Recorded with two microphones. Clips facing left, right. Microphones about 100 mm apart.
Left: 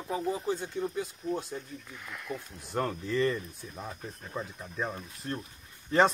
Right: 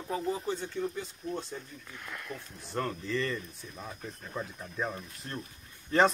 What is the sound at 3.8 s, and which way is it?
Speech, 5° left (ahead or behind).